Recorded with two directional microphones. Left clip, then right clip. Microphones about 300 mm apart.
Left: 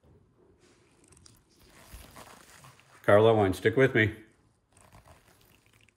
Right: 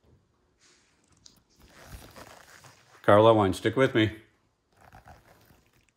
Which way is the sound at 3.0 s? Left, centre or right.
Centre.